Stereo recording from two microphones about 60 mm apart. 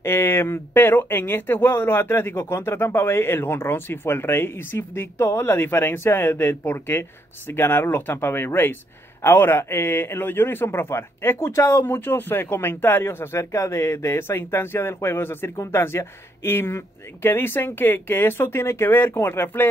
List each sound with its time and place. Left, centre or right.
0.0 s speech: left